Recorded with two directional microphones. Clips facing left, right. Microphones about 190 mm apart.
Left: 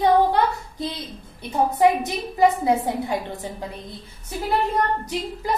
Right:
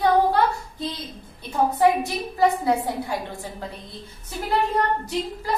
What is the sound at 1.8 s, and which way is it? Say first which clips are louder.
A woman's voice: left 2 dB; 20° left (ahead or behind).